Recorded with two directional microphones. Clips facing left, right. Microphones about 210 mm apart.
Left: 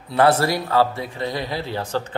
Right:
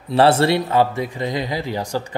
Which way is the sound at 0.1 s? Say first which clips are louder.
Right 3 dB; 25° right (ahead or behind).